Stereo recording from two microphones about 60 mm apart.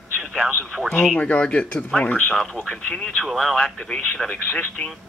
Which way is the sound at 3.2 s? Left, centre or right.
Centre.